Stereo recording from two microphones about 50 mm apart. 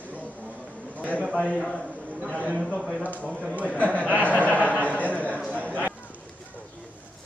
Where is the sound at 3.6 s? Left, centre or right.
Left.